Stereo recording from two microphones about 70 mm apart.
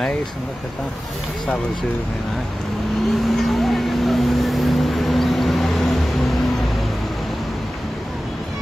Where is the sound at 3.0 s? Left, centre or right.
Centre.